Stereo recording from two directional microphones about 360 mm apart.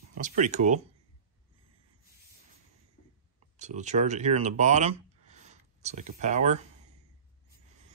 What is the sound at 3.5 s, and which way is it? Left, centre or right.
Speech, centre.